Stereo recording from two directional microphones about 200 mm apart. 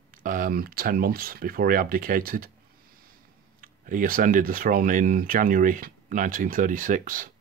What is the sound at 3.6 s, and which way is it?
Speech, 40° right (ahead or behind).